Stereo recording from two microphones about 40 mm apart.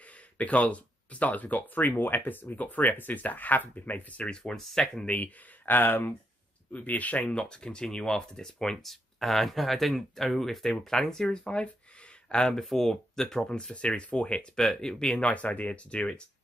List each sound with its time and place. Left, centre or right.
0.4 s speech: left
4.3 s speech: centre
5.0 s speech: left
5.7 s speech: left
6.7 s speech: left
7.3 s speech: left
13.5 s speech: left
14.5 s speech: centre
15.2 s speech: left